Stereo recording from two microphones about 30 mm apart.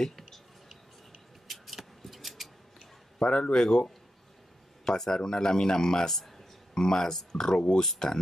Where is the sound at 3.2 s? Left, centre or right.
Left.